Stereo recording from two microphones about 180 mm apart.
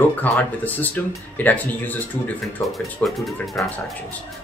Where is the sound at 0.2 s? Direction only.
10° left (ahead or behind).